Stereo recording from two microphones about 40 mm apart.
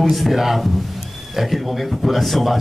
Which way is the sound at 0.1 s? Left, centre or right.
Centre.